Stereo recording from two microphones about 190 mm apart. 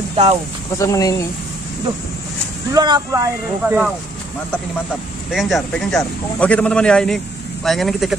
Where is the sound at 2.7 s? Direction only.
20° right (ahead or behind).